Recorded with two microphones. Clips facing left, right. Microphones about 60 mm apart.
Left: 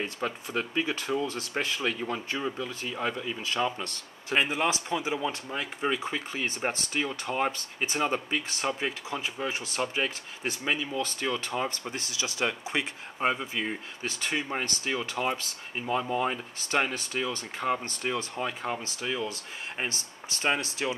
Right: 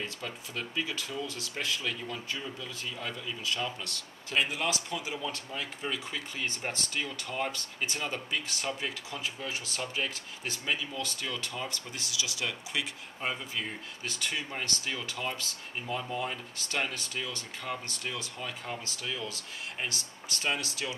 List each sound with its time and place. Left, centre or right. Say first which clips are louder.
0.0 s speech: left 6 dB; left